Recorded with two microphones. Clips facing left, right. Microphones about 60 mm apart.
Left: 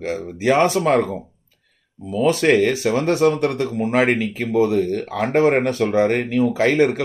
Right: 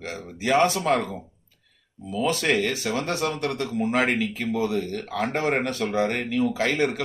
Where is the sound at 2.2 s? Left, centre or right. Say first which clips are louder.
Left 7 dB; left.